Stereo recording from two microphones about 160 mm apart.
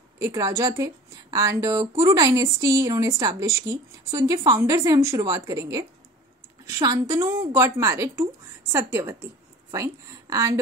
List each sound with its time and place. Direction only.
0.2 s a woman's voice: 20° right (ahead or behind)